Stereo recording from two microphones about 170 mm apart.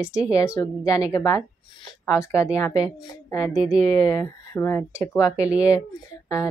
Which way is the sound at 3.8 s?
20° left (ahead or behind).